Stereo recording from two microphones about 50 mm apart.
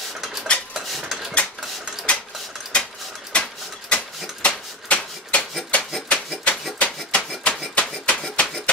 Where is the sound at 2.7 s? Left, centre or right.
Left.